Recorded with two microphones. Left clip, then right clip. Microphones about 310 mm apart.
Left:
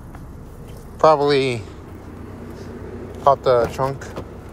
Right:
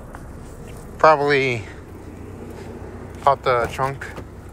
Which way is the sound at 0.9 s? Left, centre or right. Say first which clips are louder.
Even; centre.